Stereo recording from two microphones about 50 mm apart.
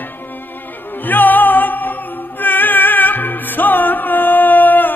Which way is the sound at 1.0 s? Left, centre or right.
Left.